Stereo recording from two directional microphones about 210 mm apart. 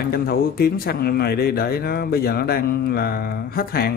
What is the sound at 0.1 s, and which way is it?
Speech, 45° left (ahead or behind).